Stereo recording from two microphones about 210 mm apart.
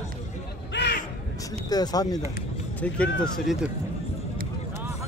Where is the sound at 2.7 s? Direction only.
5° left (ahead or behind).